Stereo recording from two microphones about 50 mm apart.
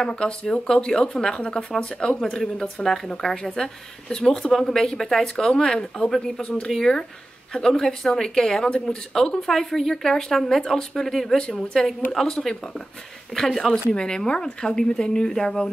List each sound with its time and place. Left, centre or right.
0.0 s speech: centre